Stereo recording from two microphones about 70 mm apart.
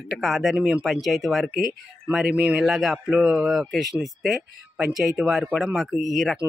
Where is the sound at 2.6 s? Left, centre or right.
Centre.